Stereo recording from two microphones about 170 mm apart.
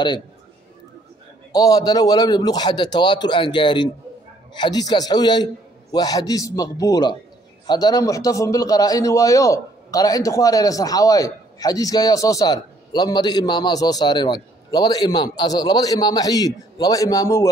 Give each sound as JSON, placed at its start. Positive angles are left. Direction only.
{"t": 1.5, "sound": "a man's voice", "side_deg": 20}